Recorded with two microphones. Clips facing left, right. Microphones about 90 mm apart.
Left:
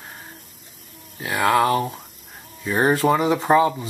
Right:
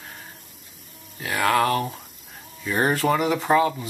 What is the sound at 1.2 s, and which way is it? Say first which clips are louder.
Speech: left 2 dB; 15° left (ahead or behind).